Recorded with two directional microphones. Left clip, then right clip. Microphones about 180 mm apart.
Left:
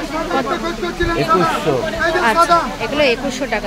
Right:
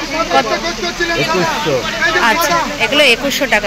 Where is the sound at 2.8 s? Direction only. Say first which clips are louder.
Right 5 dB; centre (ahead or behind).